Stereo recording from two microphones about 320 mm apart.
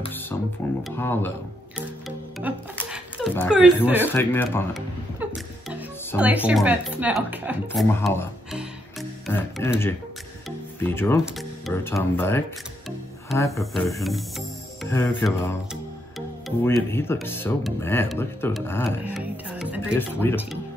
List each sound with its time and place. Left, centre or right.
0.3 s music: centre
0.8 s speech: centre
1.8 s music: centre
4.0 s speech: centre
5.2 s speech: centre
7.9 s speech: centre
19.0 s music: centre